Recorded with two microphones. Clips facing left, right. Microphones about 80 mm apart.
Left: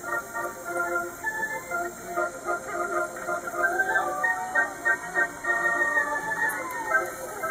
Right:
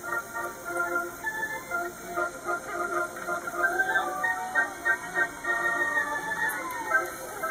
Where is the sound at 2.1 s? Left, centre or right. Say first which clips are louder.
Left 2 dB; centre.